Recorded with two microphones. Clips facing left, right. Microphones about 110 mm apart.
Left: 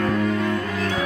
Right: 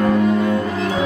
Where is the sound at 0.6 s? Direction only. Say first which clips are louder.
Right 4 dB; 25° right (ahead or behind).